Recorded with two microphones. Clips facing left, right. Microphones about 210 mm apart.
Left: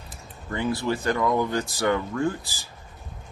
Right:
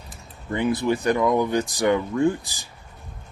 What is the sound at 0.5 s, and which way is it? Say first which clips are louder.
Speech: right 4 dB; 20° right (ahead or behind).